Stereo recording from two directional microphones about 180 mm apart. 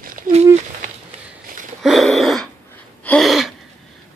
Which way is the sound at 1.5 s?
55° right (ahead or behind).